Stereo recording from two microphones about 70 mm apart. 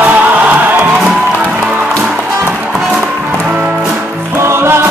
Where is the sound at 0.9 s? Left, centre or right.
Centre.